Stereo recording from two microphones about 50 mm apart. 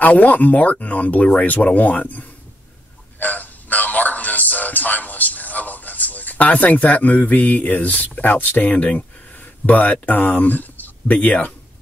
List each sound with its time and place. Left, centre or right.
0.0 s speech: left
3.2 s music: left
8.2 s speech: left